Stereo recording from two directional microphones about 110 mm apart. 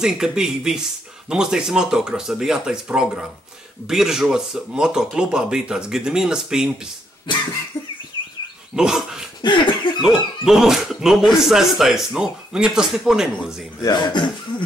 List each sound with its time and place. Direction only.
0.0 s speech: 5° right (ahead or behind)
8.7 s dog: 5° right (ahead or behind)
9.4 s cough: 45° left (ahead or behind)
10.0 s speech: 5° right (ahead or behind)
13.8 s speech: 40° left (ahead or behind)